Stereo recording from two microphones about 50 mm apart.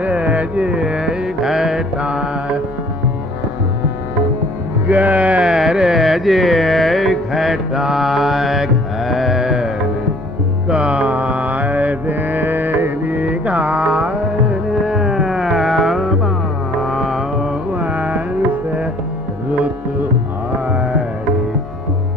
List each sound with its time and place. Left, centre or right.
0.0 s music: right; by 1.8 s centre
2.0 s mantra: centre
4.8 s music: right
5.5 s music: centre
9.1 s carnatic music: centre
10.7 s mantra: right
12.7 s music: right
13.7 s music: centre
17.7 s music: right